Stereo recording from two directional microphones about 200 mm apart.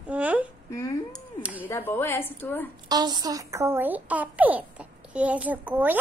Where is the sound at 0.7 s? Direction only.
15° left (ahead or behind).